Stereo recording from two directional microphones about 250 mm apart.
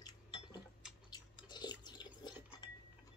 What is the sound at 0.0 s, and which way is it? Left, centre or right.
Dishes, centre.